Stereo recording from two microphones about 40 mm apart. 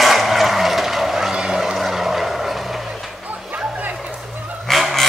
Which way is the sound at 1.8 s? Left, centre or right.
Centre.